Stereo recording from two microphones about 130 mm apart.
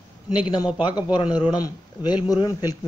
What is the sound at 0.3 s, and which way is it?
Speech, 35° left (ahead or behind).